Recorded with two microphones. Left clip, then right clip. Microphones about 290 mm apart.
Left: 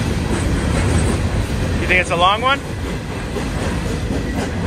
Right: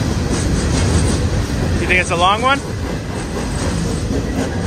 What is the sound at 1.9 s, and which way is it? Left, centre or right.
Speech, centre.